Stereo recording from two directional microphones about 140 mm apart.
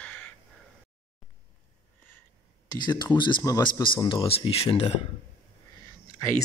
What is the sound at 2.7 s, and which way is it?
Speech, 30° left (ahead or behind).